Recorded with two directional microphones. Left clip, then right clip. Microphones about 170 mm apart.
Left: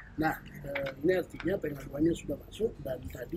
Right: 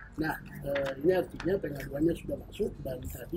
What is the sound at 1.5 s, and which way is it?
Speech, 10° left (ahead or behind).